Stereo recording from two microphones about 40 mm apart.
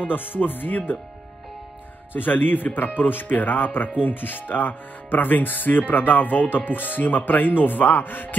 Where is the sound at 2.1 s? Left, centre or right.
Left.